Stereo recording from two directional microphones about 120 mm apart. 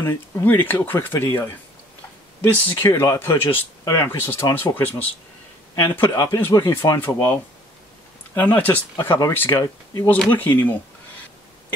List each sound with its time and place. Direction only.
0.0 s speech: 20° left (ahead or behind)
2.5 s speech: 15° left (ahead or behind)
2.9 s speech: 25° left (ahead or behind)
8.4 s speech: 15° left (ahead or behind)